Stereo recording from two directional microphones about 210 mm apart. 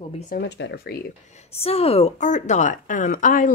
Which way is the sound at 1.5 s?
30° left (ahead or behind).